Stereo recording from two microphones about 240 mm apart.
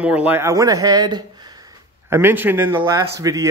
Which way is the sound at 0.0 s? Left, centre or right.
Centre.